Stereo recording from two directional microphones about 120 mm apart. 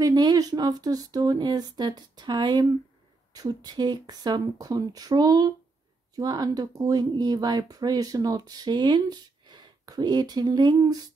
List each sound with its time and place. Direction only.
0.0 s speech: 30° right (ahead or behind)